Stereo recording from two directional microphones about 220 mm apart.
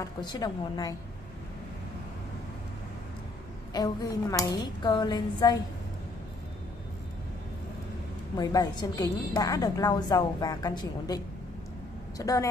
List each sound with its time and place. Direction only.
0.0 s a woman's voice: 20° left (ahead or behind)
3.7 s a woman's voice: 15° left (ahead or behind)
8.4 s a woman's voice: 15° left (ahead or behind)